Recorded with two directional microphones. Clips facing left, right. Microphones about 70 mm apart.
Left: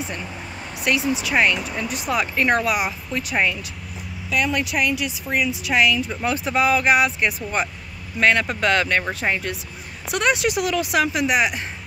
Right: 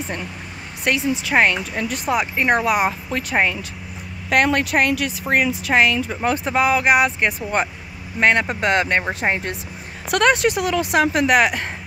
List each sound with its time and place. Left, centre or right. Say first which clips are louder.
0.8 s speech: right 1 dB; right
2.0 s speech: right 1 dB; right
3.1 s speech: right 2 dB; right
4.3 s speech: right 5 dB; right
11.2 s speech: right 4 dB; right